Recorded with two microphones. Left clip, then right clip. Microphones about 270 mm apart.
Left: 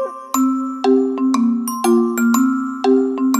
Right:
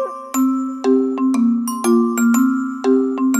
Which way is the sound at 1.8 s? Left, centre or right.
Centre.